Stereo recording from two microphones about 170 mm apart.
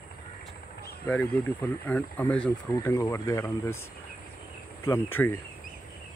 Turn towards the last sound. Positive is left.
turn(degrees=15)  # may be behind; listen again after turning